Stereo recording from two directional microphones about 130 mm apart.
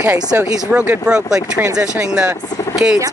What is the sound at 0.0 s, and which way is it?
Speech, 15° right (ahead or behind).